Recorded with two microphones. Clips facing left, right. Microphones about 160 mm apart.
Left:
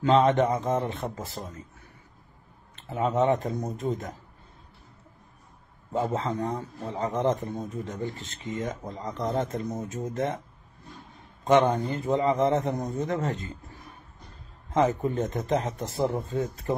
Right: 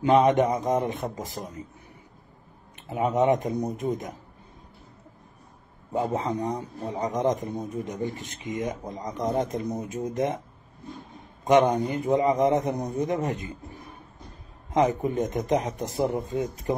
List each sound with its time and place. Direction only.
0.0 s a man's voice: 15° right (ahead or behind)
2.7 s a man's voice: 15° right (ahead or behind)
6.1 s a man's voice: 15° right (ahead or behind)
11.4 s a man's voice: 15° right (ahead or behind)
14.7 s a man's voice: 15° right (ahead or behind)